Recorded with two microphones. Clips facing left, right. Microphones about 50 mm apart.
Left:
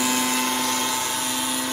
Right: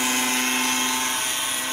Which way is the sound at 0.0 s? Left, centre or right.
Right.